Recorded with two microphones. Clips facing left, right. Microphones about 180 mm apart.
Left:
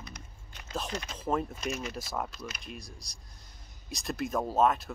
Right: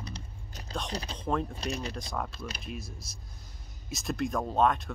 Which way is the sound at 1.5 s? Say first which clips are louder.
Even; 35° right (ahead or behind).